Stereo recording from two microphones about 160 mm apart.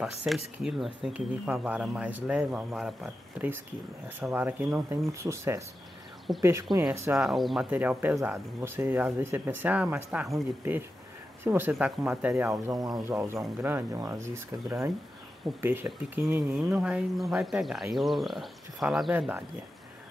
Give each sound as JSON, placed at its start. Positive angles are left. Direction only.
{"t": 0.0, "sound": "speech", "side_deg": -5}
{"t": 7.2, "sound": "speech", "side_deg": 0}
{"t": 7.7, "sound": "speech", "side_deg": -10}